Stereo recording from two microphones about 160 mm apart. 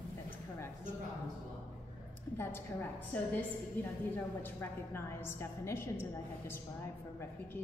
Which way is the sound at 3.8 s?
10° left (ahead or behind).